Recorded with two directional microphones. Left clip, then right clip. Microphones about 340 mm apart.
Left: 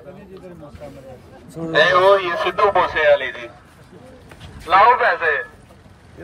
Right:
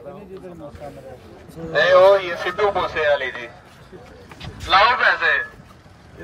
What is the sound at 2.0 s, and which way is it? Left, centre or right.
Speech, centre.